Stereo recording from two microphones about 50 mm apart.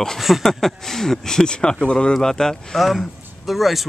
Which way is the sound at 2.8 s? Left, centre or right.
Centre.